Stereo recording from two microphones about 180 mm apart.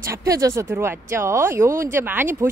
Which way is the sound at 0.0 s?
15° right (ahead or behind).